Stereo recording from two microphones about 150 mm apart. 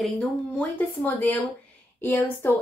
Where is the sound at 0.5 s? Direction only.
10° left (ahead or behind).